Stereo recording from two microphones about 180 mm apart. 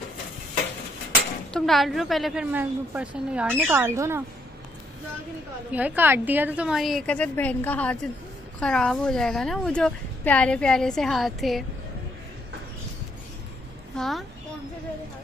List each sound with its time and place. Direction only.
1.5 s a woman's voice: centre (ahead or behind); by 4.2 s 15° right (ahead or behind)
5.7 s a woman's voice: 10° right (ahead or behind)
13.9 s a woman's voice: centre (ahead or behind)